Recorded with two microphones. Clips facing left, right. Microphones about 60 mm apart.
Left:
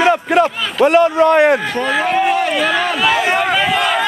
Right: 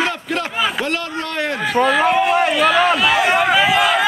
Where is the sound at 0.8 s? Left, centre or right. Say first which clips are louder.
Left 12 dB; left.